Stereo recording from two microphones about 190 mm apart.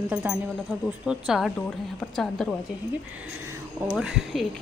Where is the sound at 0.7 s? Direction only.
5° right (ahead or behind).